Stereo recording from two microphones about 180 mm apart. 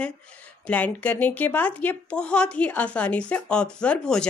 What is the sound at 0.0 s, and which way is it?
Speech, 5° left (ahead or behind).